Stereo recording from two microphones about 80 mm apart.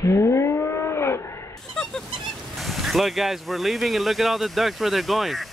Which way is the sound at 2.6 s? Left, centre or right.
Centre.